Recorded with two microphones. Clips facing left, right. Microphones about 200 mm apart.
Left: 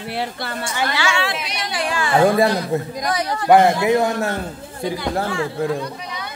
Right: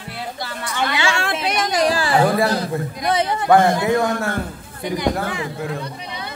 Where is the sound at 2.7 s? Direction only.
25° left (ahead or behind).